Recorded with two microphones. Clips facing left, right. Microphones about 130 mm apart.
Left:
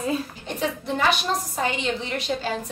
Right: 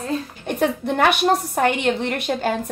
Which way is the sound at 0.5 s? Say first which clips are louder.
Right 6 dB; 60° right (ahead or behind).